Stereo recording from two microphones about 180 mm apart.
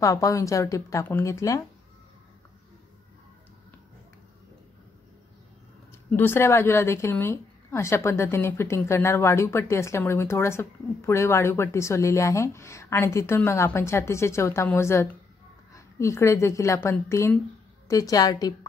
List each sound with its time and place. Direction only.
0.0 s a woman's voice: 20° left (ahead or behind)
6.0 s a woman's voice: 10° left (ahead or behind)